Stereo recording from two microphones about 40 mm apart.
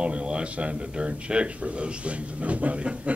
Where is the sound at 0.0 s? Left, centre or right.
Right.